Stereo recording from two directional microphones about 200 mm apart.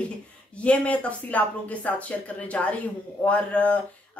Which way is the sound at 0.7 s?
5° left (ahead or behind).